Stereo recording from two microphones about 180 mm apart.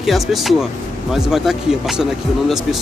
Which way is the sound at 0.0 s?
Centre (ahead or behind).